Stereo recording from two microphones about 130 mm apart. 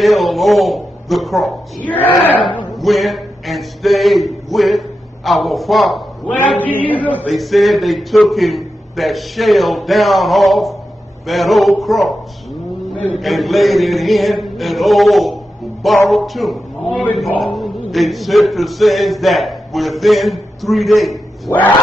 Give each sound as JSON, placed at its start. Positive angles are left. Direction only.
{"t": 0.0, "sound": "a man's voice", "side_deg": 0}
{"t": 1.9, "sound": "speech", "side_deg": 15}
{"t": 2.8, "sound": "a man's voice", "side_deg": 0}
{"t": 6.2, "sound": "speech", "side_deg": 10}
{"t": 7.2, "sound": "a man's voice", "side_deg": 0}
{"t": 13.1, "sound": "a man's voice", "side_deg": 0}
{"t": 21.5, "sound": "speech", "side_deg": 10}